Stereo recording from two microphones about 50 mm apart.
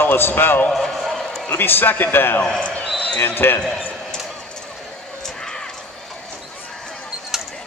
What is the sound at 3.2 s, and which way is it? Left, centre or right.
Speech, left.